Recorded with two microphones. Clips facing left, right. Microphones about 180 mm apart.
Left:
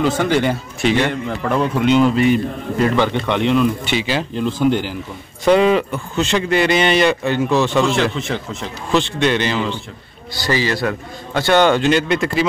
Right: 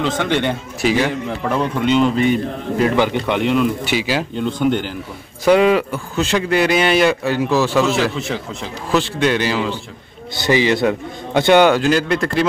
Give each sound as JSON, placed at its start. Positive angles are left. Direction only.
{"t": 0.0, "sound": "speech", "side_deg": 5}
{"t": 3.0, "sound": "speech", "side_deg": -10}
{"t": 4.5, "sound": "speech", "side_deg": 5}
{"t": 5.4, "sound": "speech", "side_deg": -5}
{"t": 10.3, "sound": "a man's voice", "side_deg": -20}
{"t": 11.6, "sound": "speech", "side_deg": -5}